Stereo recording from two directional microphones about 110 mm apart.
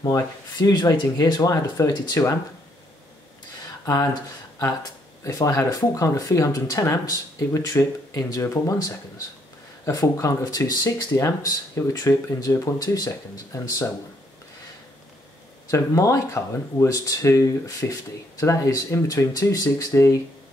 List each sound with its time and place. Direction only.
0.0 s speech: 35° left (ahead or behind)
1.8 s speech: 25° left (ahead or behind)
3.8 s speech: 30° left (ahead or behind)
5.2 s speech: 30° left (ahead or behind)
15.7 s speech: 30° left (ahead or behind)